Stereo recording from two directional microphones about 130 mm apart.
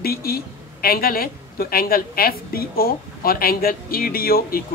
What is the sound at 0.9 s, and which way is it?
Speech, 90° left.